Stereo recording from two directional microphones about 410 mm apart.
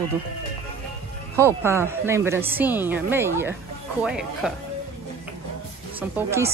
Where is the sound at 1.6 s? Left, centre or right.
Centre.